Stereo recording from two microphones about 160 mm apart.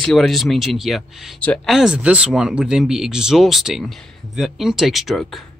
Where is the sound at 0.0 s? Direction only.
Centre (ahead or behind).